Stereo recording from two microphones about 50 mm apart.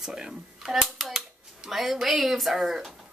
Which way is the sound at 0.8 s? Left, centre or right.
Centre.